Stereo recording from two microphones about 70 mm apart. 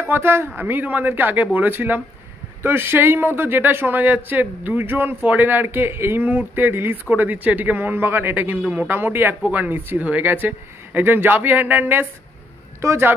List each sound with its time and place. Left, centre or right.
0.1 s a man's voice: right
12.8 s speech: right